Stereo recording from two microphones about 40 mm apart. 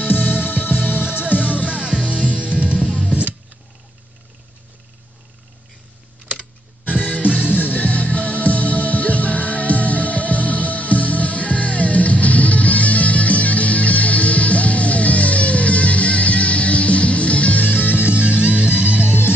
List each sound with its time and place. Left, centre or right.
0.0 s music: left
1.7 s music: right
7.5 s music: left
17.6 s music: left
17.9 s music: right